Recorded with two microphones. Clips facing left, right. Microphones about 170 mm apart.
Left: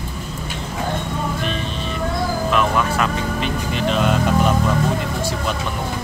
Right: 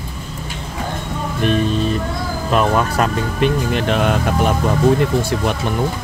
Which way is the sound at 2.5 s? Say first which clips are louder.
Right 5 dB; 40° right (ahead or behind).